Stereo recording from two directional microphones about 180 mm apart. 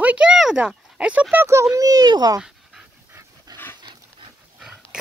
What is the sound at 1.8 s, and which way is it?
Speech, 20° right (ahead or behind).